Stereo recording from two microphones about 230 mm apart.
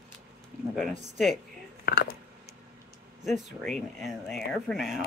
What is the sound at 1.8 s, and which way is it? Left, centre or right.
Speech, left.